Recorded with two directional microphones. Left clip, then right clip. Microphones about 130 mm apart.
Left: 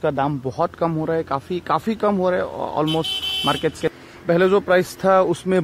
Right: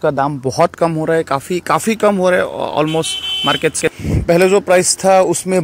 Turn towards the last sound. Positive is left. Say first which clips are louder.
# right 5 dB
turn(degrees=-15)  # may be behind; listen again after turning